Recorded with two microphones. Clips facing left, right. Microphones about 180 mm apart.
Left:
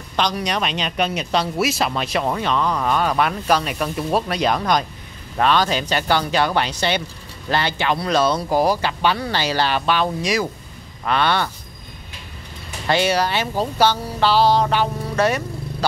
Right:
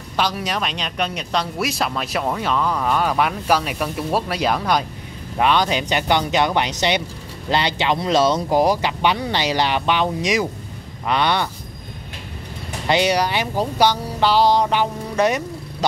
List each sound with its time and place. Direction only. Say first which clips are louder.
0.1 s speech: left 1 dB; 5° right (ahead or behind)
12.8 s speech: right 1 dB; 20° right (ahead or behind)